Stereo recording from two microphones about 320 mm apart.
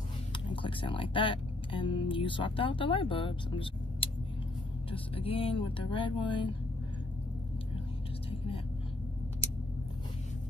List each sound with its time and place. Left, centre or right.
0.3 s speech: centre